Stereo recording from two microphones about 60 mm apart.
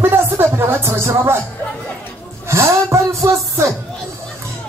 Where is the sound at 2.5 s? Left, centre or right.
Right.